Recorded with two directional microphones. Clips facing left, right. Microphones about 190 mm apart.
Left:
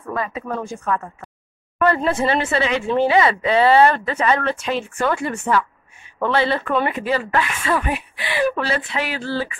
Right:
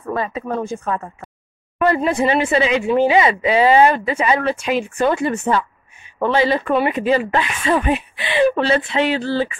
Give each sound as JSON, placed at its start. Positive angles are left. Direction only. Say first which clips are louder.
{"t": 0.1, "sound": "speech", "louder": "right 3 dB", "side_deg": -30}